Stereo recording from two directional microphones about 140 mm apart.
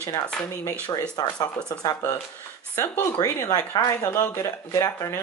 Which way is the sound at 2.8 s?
20° left (ahead or behind).